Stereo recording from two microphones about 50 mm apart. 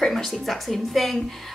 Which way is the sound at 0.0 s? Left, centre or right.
Centre.